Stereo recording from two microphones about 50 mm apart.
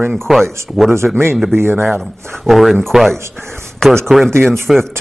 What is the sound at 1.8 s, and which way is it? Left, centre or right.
Speech, centre.